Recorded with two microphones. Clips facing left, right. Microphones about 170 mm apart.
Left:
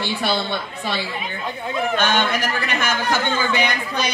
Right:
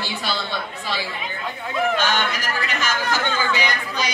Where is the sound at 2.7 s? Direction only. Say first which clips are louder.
Left 1 dB; 60° left (ahead or behind).